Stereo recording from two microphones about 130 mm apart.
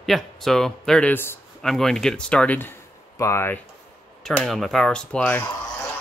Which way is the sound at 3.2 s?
20° left (ahead or behind).